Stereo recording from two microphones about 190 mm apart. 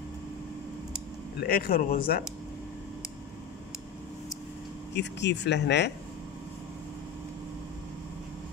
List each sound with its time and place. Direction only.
1.4 s speech: 55° left (ahead or behind)
4.9 s speech: 65° left (ahead or behind)